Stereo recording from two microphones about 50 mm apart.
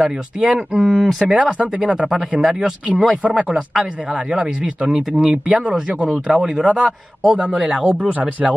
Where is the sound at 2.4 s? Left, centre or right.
Centre.